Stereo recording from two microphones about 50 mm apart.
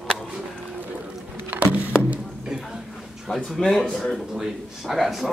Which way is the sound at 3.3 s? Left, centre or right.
Centre.